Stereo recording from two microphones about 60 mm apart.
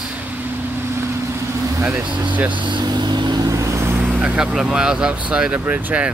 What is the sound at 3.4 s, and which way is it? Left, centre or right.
Vehicle, right.